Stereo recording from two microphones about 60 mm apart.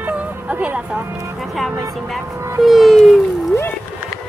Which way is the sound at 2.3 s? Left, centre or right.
Right.